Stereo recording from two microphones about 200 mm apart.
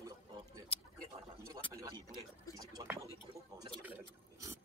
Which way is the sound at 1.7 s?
15° right (ahead or behind).